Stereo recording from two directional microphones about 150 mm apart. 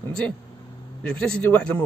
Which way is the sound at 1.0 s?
5° left (ahead or behind).